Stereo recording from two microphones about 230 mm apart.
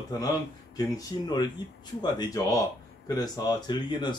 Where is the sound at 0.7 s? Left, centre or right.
Centre.